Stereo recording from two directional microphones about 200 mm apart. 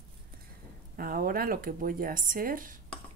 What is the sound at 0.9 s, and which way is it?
A woman's voice, 45° right (ahead or behind).